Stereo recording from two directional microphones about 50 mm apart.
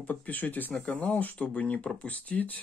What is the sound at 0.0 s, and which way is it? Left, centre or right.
Speech, left.